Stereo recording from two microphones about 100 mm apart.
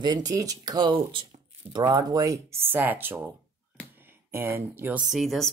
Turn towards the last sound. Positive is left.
turn(degrees=0)  # may be behind; listen again after turning